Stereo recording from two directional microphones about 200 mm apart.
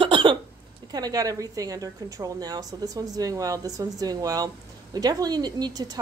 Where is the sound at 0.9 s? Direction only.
20° right (ahead or behind).